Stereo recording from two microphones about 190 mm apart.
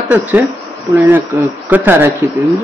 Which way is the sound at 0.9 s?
25° right (ahead or behind).